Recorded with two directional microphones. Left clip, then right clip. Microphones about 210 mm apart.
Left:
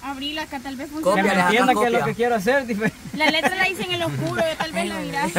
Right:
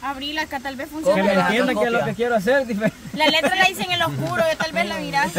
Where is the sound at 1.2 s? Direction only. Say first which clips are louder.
Even; 50° left (ahead or behind).